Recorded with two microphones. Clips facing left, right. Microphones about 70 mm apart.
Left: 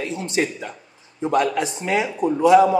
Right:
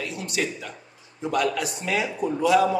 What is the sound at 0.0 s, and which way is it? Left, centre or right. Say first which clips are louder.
Speech: left 5 dB; left.